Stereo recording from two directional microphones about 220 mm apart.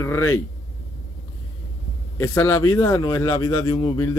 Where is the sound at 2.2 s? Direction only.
10° left (ahead or behind).